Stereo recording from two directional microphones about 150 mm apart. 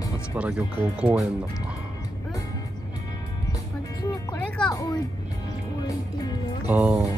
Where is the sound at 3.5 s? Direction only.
20° left (ahead or behind).